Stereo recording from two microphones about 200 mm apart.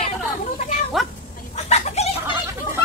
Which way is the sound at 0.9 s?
Centre (ahead or behind).